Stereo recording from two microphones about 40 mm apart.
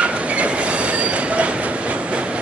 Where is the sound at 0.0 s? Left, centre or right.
Right.